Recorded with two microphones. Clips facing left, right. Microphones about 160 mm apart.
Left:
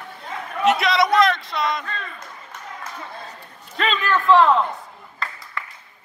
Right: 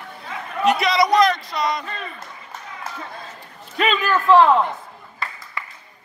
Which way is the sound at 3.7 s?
5° right (ahead or behind).